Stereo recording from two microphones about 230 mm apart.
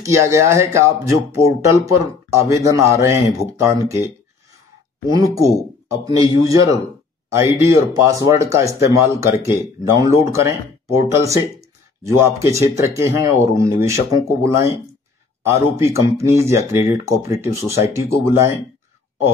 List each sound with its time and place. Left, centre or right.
0.0 s speech: centre
5.1 s speech: centre
7.3 s speech: centre